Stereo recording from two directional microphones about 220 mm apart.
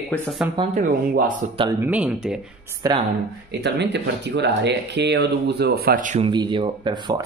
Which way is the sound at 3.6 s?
50° right (ahead or behind).